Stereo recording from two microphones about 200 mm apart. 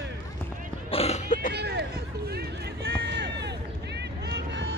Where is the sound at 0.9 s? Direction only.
30° left (ahead or behind).